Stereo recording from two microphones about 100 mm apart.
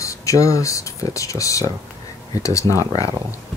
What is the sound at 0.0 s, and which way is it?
Speech, 30° left (ahead or behind).